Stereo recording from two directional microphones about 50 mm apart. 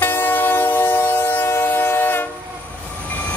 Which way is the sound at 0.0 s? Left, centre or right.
Left.